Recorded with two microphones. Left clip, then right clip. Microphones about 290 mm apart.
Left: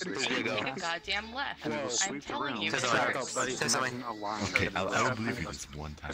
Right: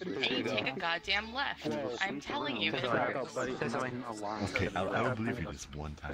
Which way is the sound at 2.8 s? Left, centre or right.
Left.